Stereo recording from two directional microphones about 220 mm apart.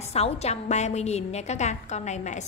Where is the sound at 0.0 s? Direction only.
30° left (ahead or behind).